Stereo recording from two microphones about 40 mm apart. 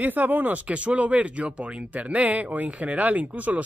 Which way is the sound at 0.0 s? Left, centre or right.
Right.